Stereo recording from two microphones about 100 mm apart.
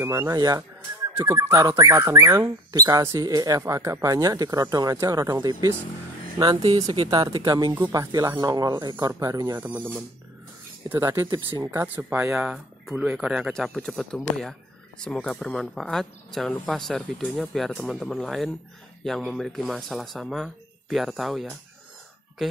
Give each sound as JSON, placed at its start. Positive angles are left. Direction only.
{"t": 0.0, "sound": "speech", "side_deg": -25}
{"t": 6.6, "sound": "speech", "side_deg": -65}
{"t": 7.4, "sound": "speech", "side_deg": -40}
{"t": 9.6, "sound": "speech", "side_deg": -15}
{"t": 10.9, "sound": "speech", "side_deg": -30}
{"t": 11.2, "sound": "speech", "side_deg": -45}
{"t": 11.8, "sound": "speech", "side_deg": -20}
{"t": 13.5, "sound": "speech", "side_deg": 5}
{"t": 15.2, "sound": "speech", "side_deg": 5}